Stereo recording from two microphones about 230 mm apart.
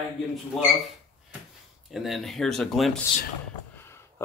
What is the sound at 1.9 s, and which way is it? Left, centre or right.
Speech, centre.